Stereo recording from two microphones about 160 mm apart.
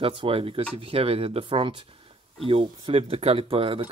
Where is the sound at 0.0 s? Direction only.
35° right (ahead or behind).